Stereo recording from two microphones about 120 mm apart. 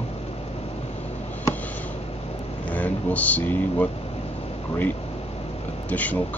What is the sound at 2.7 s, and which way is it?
Speech, 15° left (ahead or behind).